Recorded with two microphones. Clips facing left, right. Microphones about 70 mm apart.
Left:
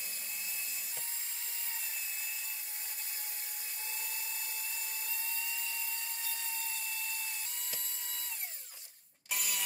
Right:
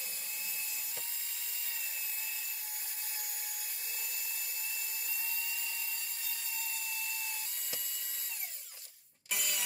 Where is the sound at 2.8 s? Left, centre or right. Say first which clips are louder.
Even; left.